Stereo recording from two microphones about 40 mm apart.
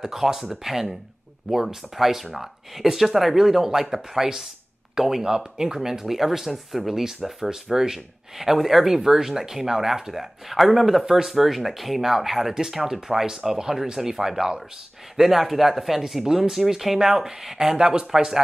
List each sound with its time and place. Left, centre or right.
0.0 s speech: centre
17.7 s speech: centre